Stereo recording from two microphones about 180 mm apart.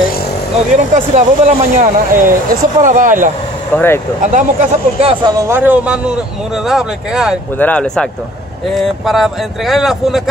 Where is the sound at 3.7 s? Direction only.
10° left (ahead or behind).